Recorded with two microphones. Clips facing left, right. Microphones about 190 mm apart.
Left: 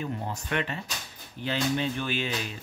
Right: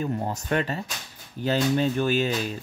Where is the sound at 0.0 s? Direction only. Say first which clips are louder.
Right 5 dB; 45° right (ahead or behind).